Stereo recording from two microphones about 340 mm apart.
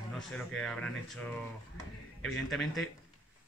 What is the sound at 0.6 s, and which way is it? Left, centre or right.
Speech, centre.